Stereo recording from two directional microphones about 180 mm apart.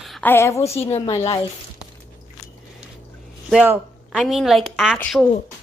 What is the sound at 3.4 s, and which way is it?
A woman's voice, 5° right (ahead or behind).